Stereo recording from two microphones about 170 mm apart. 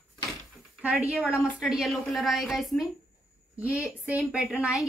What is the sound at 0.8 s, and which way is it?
A woman's voice, 5° right (ahead or behind).